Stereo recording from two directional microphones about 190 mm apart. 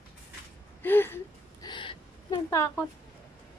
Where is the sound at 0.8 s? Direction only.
10° left (ahead or behind).